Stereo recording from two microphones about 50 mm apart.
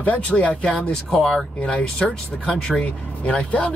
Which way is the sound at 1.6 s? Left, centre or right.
Centre.